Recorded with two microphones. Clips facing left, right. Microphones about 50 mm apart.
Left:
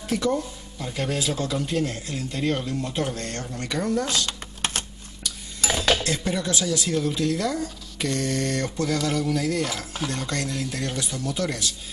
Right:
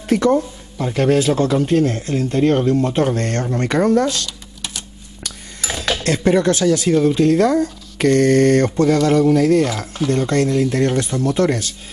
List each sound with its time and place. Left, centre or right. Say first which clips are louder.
0.1 s speech: right 9 dB; right
4.3 s typing: left 2 dB; left
6.0 s speech: right 11 dB; right
9.0 s speech: right 11 dB; right